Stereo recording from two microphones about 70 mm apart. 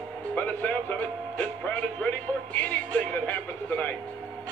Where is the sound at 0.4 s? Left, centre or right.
Left.